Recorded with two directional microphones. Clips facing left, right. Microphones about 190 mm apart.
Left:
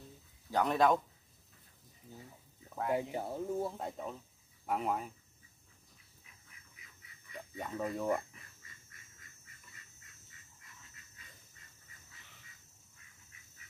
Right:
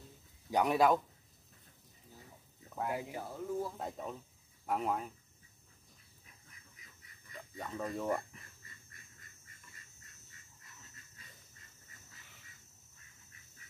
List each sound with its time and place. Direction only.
0.5 s speech: 10° right (ahead or behind)
2.9 s speech: 25° left (ahead or behind)
3.7 s speech: centre (ahead or behind)
7.5 s speech: 10° left (ahead or behind)